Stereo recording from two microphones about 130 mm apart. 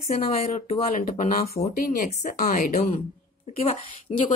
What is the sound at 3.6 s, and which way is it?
Speech, 50° left (ahead or behind).